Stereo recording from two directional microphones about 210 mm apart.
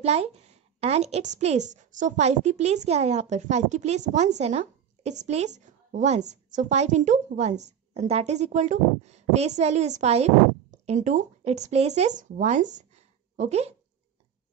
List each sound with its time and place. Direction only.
0.0 s a woman's voice: 30° right (ahead or behind)